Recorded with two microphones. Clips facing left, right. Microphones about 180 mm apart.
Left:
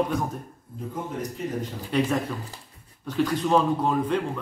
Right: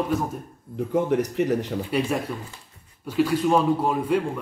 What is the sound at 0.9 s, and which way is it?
Speech, 75° right (ahead or behind).